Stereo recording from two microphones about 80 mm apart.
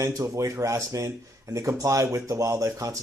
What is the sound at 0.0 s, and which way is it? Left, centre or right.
Speech, right.